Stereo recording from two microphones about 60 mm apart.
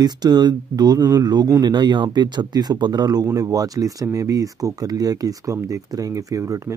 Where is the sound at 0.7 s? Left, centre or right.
Right.